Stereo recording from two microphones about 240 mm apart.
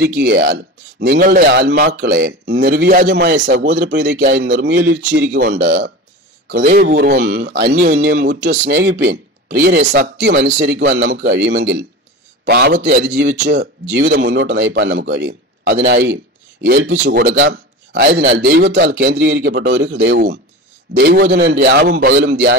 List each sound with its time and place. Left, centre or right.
0.2 s speech: right
3.8 s a man's voice: right
13.3 s a man's voice: right
22.3 s a man's voice: right